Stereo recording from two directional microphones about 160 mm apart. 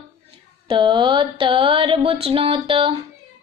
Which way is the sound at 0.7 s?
30° right (ahead or behind).